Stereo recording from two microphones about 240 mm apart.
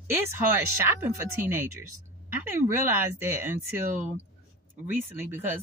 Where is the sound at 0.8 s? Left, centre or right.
Centre.